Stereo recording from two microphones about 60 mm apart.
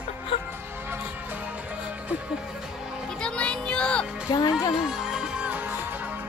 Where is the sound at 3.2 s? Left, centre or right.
Centre.